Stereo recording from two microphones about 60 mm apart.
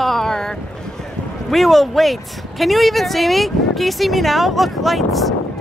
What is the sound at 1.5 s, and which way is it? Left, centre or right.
Speech, centre.